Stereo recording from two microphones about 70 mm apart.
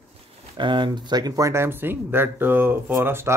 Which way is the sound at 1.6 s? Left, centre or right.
Right.